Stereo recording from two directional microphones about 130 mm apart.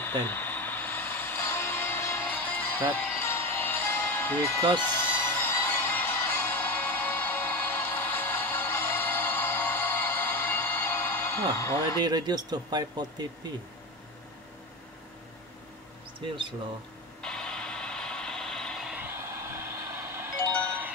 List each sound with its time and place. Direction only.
0.0 s music: 15° left (ahead or behind)
12.0 s speech: 35° right (ahead or behind)
17.2 s mechanisms: 5° left (ahead or behind)
18.9 s vehicle: 15° right (ahead or behind)